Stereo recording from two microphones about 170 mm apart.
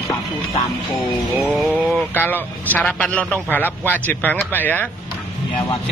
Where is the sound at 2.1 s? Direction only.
10° left (ahead or behind).